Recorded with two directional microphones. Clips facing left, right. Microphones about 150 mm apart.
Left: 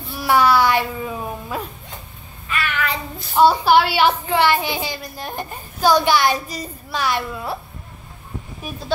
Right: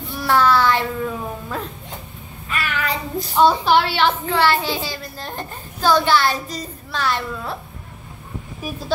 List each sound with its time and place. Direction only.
0.1 s a child's voice: 10° left (ahead or behind)
2.6 s child singing: 40° right (ahead or behind)
3.3 s a woman's voice: 10° left (ahead or behind)